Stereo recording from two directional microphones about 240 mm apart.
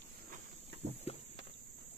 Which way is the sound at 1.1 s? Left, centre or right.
Left.